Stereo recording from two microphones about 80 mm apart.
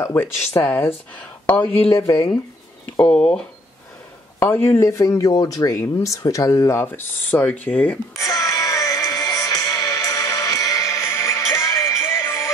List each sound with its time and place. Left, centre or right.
0.0 s speech: left
3.0 s speech: centre
4.4 s speech: left
5.7 s speech: left
8.2 s music: left